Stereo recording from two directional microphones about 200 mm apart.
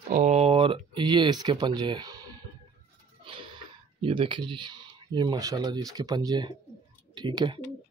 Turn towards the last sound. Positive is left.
turn(degrees=-20)  # may be behind; listen again after turning